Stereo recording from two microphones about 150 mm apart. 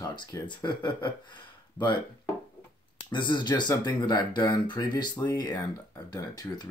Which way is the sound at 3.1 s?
30° left (ahead or behind).